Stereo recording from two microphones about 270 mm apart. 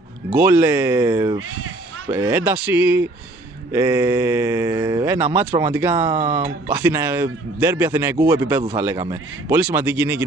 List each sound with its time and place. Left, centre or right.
0.3 s speech: centre
5.9 s speech: centre
6.7 s speech: centre